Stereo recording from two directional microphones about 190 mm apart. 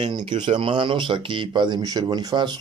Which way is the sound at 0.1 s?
25° right (ahead or behind).